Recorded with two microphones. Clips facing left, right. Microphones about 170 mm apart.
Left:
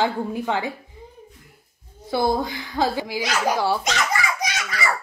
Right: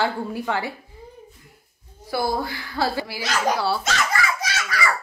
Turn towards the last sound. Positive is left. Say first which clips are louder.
# even
turn(degrees=15)  # may be behind; listen again after turning